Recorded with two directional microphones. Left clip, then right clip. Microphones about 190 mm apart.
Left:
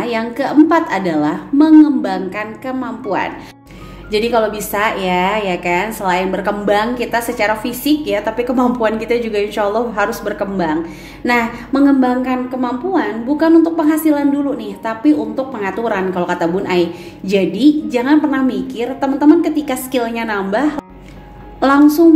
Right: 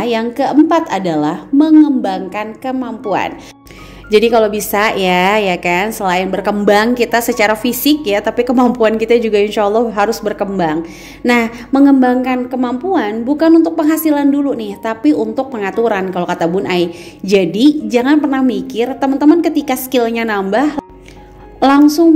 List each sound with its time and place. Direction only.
0.0 s a woman's voice: 40° right (ahead or behind)